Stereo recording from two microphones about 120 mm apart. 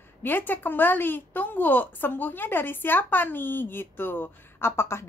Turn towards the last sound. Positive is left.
turn(degrees=20)  # may be behind; listen again after turning